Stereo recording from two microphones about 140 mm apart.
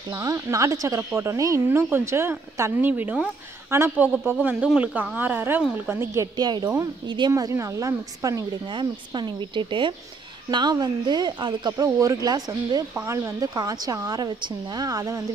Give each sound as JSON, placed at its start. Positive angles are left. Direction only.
{"t": 0.1, "sound": "speech", "side_deg": -20}
{"t": 6.3, "sound": "speech", "side_deg": -30}